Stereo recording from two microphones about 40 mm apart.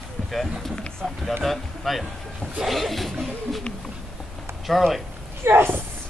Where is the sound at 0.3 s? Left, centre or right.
Centre.